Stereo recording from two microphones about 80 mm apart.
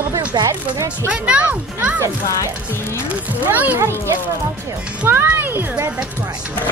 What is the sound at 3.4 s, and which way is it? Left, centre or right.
Speech, right.